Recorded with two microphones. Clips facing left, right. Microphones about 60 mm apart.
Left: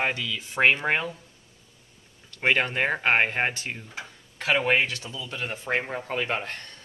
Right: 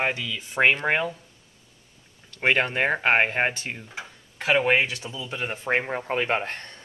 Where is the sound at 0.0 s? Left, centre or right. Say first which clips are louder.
Right 1 dB; centre.